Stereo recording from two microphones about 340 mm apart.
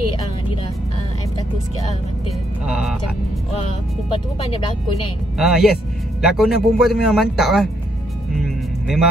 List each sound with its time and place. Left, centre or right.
2.6 s music: centre
4.1 s speech: centre
5.4 s a man's voice: centre
8.4 s music: centre